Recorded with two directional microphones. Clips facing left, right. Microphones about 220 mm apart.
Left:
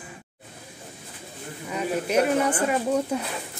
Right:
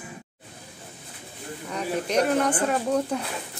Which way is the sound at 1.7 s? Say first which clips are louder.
Left 2 dB; 5° left (ahead or behind).